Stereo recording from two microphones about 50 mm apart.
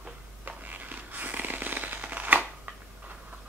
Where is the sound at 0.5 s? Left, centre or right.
Right.